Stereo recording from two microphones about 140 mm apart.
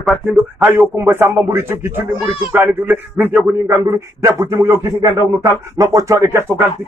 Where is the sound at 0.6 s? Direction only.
15° right (ahead or behind).